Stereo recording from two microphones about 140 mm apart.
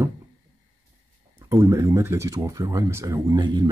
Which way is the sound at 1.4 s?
20° right (ahead or behind).